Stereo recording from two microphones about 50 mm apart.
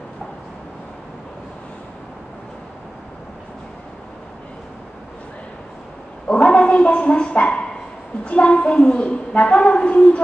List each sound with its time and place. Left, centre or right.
6.2 s bow-wow: left
8.3 s a woman's voice: left